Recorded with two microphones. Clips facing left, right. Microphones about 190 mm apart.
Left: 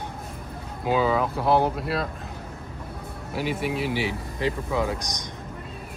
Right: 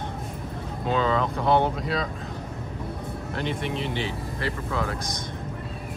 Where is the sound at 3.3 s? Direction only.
5° left (ahead or behind).